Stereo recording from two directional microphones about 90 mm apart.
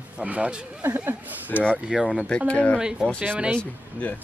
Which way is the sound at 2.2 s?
15° left (ahead or behind).